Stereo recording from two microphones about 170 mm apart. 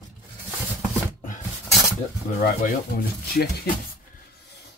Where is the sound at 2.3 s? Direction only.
55° left (ahead or behind).